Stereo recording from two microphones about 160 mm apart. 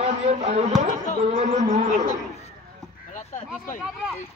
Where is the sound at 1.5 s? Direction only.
50° right (ahead or behind).